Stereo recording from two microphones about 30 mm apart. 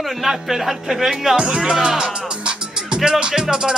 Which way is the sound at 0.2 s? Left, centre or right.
Centre.